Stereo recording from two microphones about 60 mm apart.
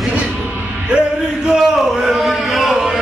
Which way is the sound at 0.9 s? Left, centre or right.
Centre.